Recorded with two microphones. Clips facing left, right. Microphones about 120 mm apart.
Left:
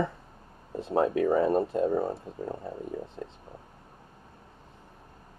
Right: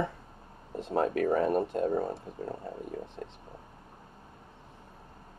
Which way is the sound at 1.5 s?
25° left (ahead or behind).